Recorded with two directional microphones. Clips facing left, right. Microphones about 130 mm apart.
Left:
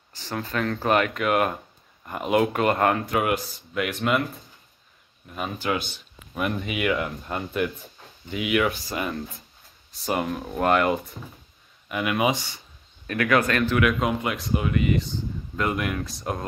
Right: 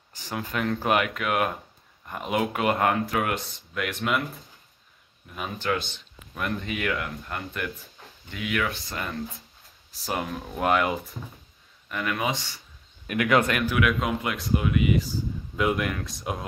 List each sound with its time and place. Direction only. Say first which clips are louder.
0.1 s speech: left 2 dB; 15° right (ahead or behind); by 5.7 s centre (ahead or behind)
5.9 s a sound: left 5 dB; 15° left (ahead or behind)
6.6 s speech: left 5 dB; 10° left (ahead or behind)
7.0 s speech: left 4 dB; 25° left (ahead or behind)
8.8 s speech: left 3 dB; 5° left (ahead or behind)
11.9 s speech: left 5 dB; 15° left (ahead or behind)
13.0 s speech: even; 15° right (ahead or behind)
13.6 s speech: left 3 dB; 5° right (ahead or behind)